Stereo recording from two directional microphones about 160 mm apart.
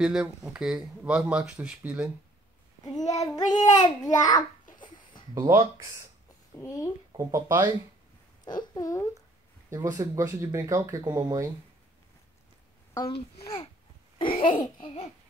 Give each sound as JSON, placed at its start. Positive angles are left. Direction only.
{"t": 0.0, "sound": "speech", "side_deg": -5}
{"t": 2.8, "sound": "a child's voice", "side_deg": 20}
{"t": 5.3, "sound": "speech", "side_deg": -20}
{"t": 6.6, "sound": "speech", "side_deg": 20}
{"t": 7.2, "sound": "speech", "side_deg": -20}
{"t": 8.5, "sound": "speech", "side_deg": 25}
{"t": 9.7, "sound": "speech", "side_deg": -20}
{"t": 14.1, "sound": "babbling", "side_deg": 35}